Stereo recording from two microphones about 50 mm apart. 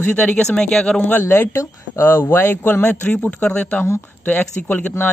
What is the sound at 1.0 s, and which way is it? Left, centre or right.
Speech, left.